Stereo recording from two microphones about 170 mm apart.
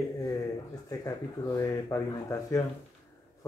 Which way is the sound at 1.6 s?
20° left (ahead or behind).